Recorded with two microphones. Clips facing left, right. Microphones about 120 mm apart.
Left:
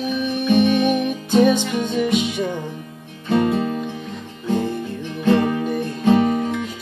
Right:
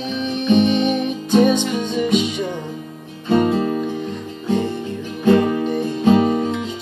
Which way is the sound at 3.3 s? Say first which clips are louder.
Right 2 dB; 25° right (ahead or behind).